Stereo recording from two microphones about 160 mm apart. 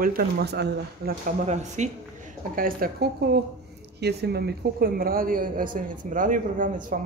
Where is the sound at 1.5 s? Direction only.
45° right (ahead or behind).